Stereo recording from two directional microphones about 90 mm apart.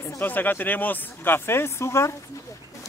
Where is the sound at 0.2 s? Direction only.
20° left (ahead or behind).